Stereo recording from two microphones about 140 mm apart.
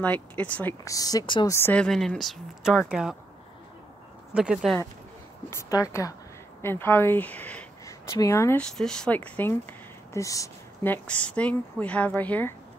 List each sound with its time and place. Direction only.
0.0 s speech: 10° left (ahead or behind)
0.8 s speech: 25° left (ahead or behind)
1.5 s speech: 15° left (ahead or behind); by 3.2 s 5° right (ahead or behind)
4.3 s speech: 5° right (ahead or behind)
5.5 s speech: 25° left (ahead or behind)
7.8 s a sound: 25° left (ahead or behind)
8.5 s speech: 5° left (ahead or behind)